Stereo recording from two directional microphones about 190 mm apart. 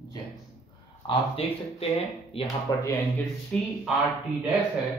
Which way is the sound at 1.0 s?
30° left (ahead or behind).